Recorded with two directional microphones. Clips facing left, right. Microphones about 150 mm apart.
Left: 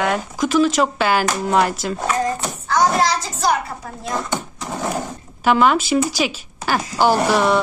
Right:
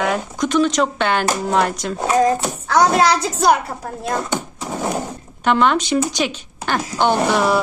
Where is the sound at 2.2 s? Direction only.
75° right (ahead or behind).